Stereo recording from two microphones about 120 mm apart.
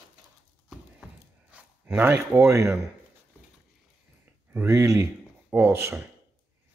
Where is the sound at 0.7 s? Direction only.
5° right (ahead or behind).